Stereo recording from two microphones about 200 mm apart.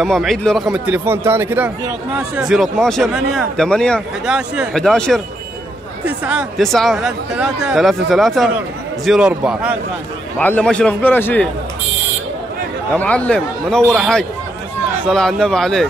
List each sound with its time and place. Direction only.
0.0 s speech: centre (ahead or behind)
6.2 s speech: centre (ahead or behind)
10.4 s a man's voice: 5° left (ahead or behind)
12.9 s a man's voice: 5° left (ahead or behind)